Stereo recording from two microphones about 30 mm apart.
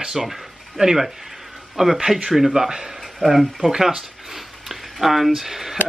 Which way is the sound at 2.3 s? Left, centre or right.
Centre.